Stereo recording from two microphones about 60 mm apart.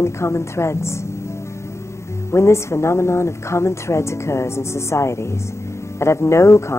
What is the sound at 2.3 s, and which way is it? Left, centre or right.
A woman's voice, left.